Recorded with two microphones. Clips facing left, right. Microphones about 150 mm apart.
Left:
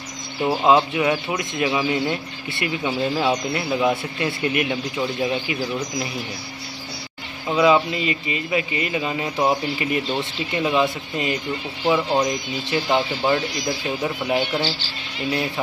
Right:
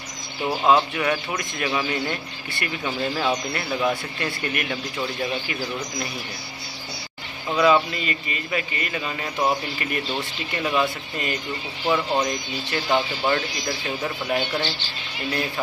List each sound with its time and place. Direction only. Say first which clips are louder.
0.5 s speech: left 2 dB; 20° left (ahead or behind)
7.5 s speech: left 2 dB; 15° left (ahead or behind)